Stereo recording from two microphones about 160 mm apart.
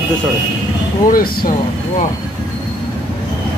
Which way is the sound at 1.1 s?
65° left (ahead or behind).